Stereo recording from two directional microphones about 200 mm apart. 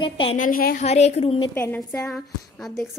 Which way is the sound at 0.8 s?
35° left (ahead or behind).